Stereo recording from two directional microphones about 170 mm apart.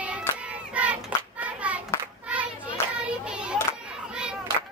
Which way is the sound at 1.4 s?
10° right (ahead or behind).